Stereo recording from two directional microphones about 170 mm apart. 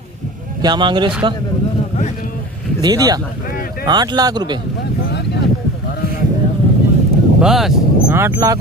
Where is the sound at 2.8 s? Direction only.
20° right (ahead or behind).